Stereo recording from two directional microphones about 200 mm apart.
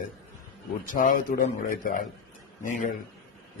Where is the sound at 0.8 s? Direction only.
40° left (ahead or behind).